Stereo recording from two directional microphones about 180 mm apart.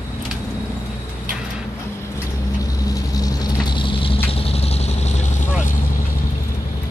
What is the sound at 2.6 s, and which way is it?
Vehicle, 20° left (ahead or behind).